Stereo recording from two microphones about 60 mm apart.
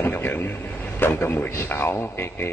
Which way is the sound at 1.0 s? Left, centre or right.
Left.